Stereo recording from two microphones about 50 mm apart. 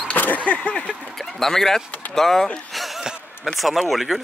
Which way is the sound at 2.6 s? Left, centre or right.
Centre.